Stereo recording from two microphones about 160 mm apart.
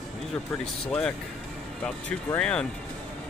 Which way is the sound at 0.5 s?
5° left (ahead or behind).